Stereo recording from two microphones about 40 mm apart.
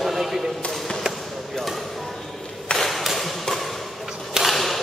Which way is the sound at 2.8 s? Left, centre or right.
Centre.